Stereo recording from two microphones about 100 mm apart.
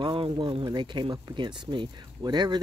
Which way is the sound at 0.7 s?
50° right (ahead or behind).